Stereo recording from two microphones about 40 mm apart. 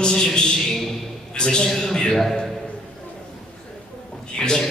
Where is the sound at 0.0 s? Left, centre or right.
Centre.